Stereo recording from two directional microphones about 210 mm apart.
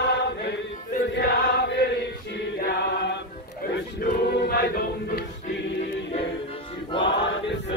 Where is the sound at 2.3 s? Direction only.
55° left (ahead or behind).